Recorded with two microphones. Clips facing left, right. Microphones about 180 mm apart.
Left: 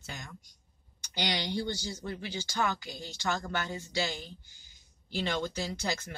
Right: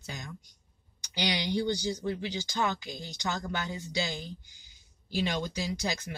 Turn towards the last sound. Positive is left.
turn(degrees=-15)  # may be behind; listen again after turning